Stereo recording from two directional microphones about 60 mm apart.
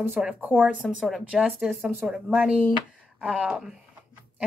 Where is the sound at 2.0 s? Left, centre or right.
Centre.